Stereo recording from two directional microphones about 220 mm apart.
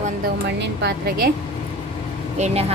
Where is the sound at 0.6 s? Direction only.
50° right (ahead or behind).